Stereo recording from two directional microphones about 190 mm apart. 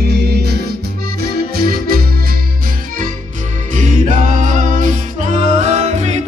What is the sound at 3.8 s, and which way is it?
Music, 40° right (ahead or behind).